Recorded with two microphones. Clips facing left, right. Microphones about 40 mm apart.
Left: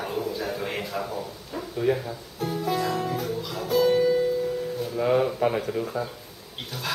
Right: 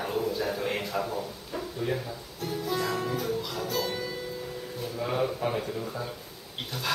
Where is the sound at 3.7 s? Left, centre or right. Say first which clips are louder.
Left 15 dB; centre.